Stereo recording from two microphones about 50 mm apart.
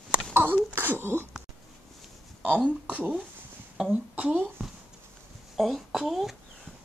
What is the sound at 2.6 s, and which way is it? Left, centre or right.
Speech, right.